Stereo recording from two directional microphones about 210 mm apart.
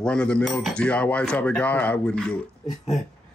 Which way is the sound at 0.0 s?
5° left (ahead or behind).